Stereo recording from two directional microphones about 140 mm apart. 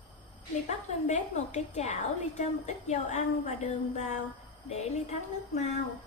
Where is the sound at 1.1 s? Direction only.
50° left (ahead or behind).